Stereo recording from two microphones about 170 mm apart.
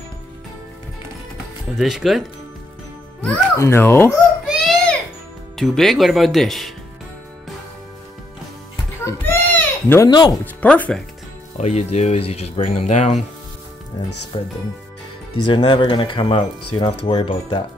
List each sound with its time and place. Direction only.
1.8 s speech: centre (ahead or behind)
3.5 s speech: 15° left (ahead or behind)
4.5 s a sound: centre (ahead or behind)
5.6 s speech: centre (ahead or behind)
9.0 s baby cry: 10° left (ahead or behind)
10.0 s speech: 25° left (ahead or behind)
10.4 s speech: 10° left (ahead or behind)
11.5 s speech: 40° left (ahead or behind)
14.3 s speech: 30° left (ahead or behind)